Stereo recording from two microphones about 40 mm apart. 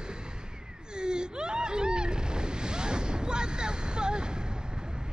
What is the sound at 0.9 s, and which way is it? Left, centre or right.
Waves, right.